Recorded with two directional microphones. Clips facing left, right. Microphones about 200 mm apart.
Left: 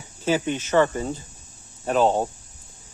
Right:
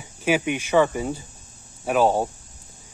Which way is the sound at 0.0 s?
10° right (ahead or behind).